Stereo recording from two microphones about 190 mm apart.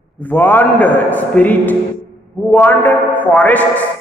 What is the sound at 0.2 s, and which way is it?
A woman's voice, 10° left (ahead or behind).